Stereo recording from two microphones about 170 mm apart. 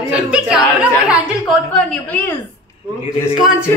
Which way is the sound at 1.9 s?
10° left (ahead or behind).